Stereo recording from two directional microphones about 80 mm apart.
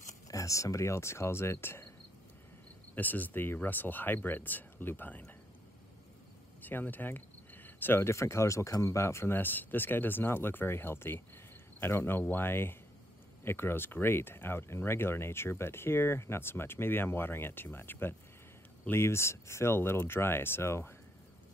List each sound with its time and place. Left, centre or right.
0.3 s speech: left
2.9 s speech: left
6.6 s speech: left